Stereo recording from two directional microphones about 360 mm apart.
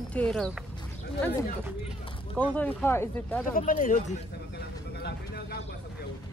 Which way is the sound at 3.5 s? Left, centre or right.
Left.